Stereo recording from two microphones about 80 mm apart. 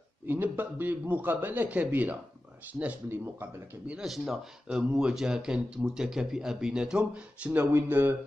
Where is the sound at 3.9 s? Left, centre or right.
Centre.